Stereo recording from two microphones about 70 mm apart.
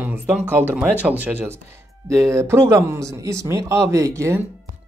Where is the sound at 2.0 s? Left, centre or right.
Right.